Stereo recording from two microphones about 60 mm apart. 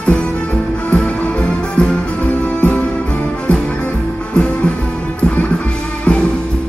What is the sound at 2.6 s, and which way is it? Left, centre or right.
Music, centre.